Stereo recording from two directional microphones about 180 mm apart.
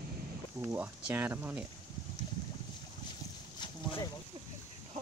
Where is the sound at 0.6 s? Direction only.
10° right (ahead or behind).